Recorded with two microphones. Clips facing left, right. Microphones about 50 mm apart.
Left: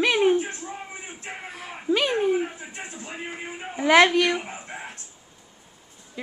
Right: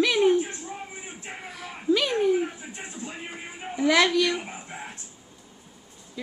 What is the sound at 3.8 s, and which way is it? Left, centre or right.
Speech, left.